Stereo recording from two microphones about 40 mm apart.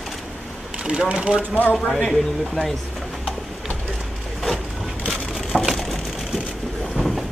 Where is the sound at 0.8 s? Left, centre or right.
Right.